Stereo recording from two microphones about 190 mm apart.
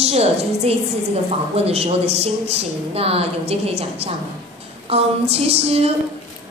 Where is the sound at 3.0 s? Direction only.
30° right (ahead or behind).